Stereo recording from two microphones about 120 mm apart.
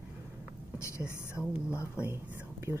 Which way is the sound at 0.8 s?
25° left (ahead or behind).